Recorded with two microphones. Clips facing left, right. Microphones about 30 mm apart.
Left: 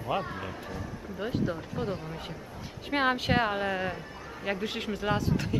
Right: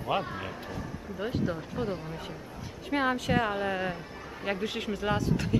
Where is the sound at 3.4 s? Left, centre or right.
Centre.